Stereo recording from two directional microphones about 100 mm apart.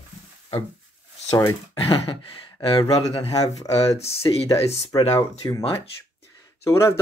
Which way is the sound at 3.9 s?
90° left.